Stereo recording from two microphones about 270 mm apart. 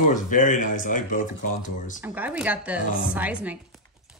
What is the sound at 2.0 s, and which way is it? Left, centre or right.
Speech, centre.